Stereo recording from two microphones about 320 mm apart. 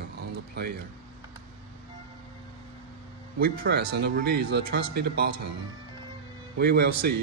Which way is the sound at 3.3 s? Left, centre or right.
Right.